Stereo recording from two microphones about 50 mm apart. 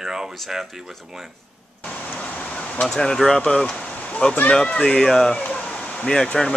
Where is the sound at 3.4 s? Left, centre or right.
Centre.